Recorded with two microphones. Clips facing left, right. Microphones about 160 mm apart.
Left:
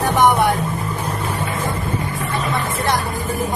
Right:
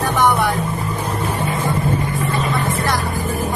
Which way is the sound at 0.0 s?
20° left (ahead or behind).